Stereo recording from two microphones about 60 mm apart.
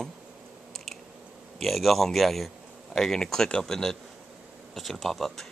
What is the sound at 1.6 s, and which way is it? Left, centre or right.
Speech, centre.